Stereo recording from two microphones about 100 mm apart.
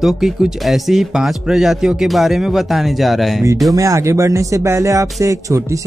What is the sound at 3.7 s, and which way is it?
Speech, 35° right (ahead or behind).